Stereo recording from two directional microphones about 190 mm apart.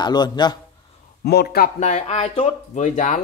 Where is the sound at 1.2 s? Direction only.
60° left (ahead or behind).